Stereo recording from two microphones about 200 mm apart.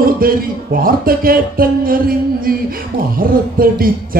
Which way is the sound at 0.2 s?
45° right (ahead or behind).